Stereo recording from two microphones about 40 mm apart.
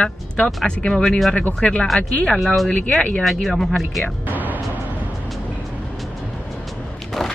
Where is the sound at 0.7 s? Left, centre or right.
Centre.